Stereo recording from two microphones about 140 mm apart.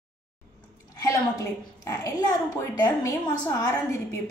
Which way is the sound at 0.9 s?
25° left (ahead or behind).